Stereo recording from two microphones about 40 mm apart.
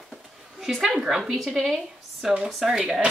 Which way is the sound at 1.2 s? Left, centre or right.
Centre.